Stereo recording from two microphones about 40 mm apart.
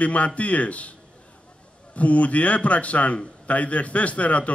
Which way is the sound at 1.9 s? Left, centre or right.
Left.